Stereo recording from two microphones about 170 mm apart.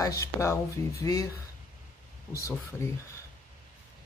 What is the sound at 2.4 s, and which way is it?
Speech, 15° left (ahead or behind).